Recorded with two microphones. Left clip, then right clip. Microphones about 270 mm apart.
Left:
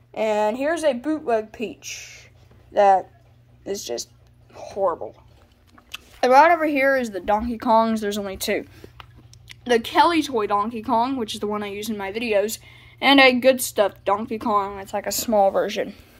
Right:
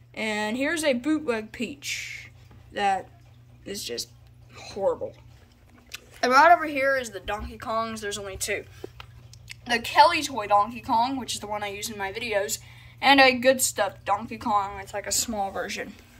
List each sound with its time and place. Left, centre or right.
0.1 s speech: centre
4.6 s speech: centre
5.9 s a sound: centre
6.6 s a woman's voice: centre
10.4 s a woman's voice: centre